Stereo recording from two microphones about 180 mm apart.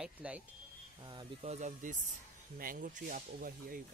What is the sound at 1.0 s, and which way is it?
Speech, 25° right (ahead or behind).